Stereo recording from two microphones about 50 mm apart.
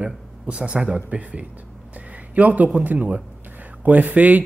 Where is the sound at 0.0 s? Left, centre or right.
Centre.